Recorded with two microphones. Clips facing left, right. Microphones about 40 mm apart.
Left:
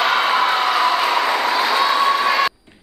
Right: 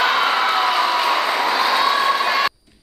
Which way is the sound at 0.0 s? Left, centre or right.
Centre.